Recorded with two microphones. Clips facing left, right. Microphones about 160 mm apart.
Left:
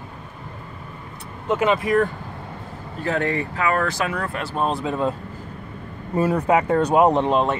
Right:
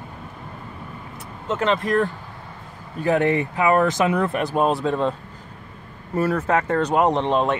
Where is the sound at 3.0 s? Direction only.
20° right (ahead or behind).